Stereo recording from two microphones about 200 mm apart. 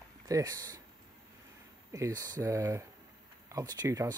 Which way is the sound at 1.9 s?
15° right (ahead or behind).